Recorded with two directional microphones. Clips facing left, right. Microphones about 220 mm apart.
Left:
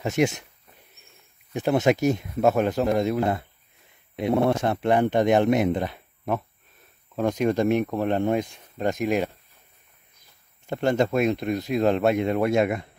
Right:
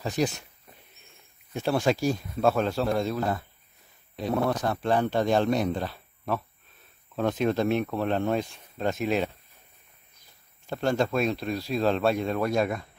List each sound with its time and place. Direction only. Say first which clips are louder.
0.0 s speech: left 4 dB; 25° left (ahead or behind)
1.5 s speech: left 4 dB; 20° left (ahead or behind)
10.7 s speech: left 3 dB; 20° left (ahead or behind)